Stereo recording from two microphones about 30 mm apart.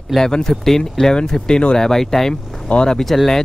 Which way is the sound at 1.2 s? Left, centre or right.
Left.